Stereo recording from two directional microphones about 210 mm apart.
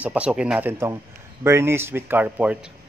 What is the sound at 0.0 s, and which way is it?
A man's voice, 5° right (ahead or behind).